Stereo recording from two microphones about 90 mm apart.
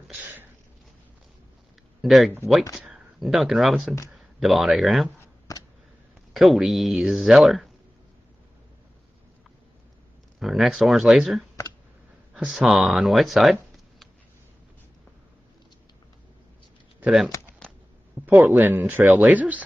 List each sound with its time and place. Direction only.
2.0 s speech: centre (ahead or behind)
5.5 s a sound: 40° left (ahead or behind)
6.3 s speech: centre (ahead or behind)
10.4 s speech: centre (ahead or behind)
17.0 s speech: 5° right (ahead or behind)
18.2 s speech: 20° right (ahead or behind)